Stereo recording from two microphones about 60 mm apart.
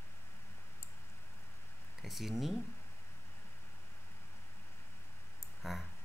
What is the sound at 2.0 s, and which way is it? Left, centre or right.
Speech, centre.